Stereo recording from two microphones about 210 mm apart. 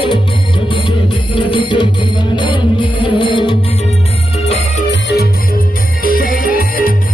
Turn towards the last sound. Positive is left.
turn(degrees=40)  # may be behind; listen again after turning